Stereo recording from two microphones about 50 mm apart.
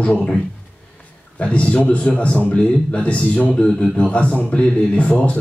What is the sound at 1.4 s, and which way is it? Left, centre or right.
Speech, left.